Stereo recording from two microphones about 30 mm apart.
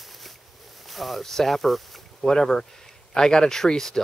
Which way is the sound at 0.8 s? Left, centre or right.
Centre.